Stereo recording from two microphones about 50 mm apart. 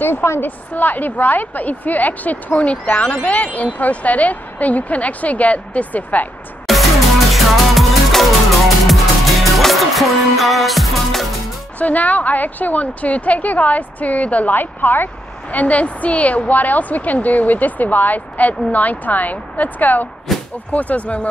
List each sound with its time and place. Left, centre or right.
0.0 s a woman's voice: left
0.4 s a woman's voice: left
6.7 s music: centre
11.8 s a woman's voice: left
15.5 s a woman's voice: left
20.3 s a sound: centre
20.7 s speech: left